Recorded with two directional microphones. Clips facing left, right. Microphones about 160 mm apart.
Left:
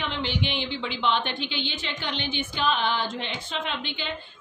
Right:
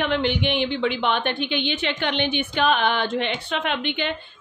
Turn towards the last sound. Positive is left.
turn(degrees=-65)  # may be behind; listen again after turning